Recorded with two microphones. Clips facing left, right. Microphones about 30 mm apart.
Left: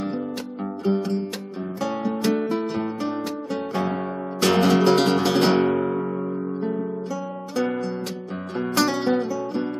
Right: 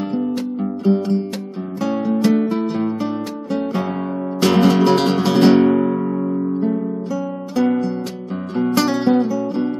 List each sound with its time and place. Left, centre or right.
0.8 s music: centre